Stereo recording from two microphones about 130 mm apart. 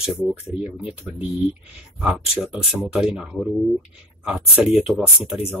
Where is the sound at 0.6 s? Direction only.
10° right (ahead or behind).